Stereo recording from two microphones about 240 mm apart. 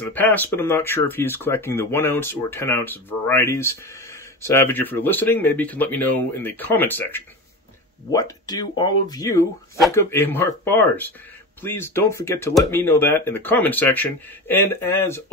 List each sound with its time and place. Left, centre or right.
0.0 s speech: centre